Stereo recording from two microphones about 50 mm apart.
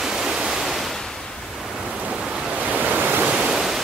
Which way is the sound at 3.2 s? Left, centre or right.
Centre.